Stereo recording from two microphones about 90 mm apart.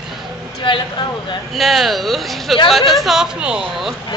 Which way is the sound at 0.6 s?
65° left (ahead or behind).